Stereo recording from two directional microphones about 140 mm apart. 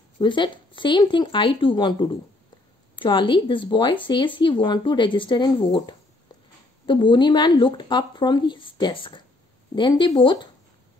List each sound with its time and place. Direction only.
0.2 s speech: 35° left (ahead or behind)
6.9 s speech: 35° left (ahead or behind)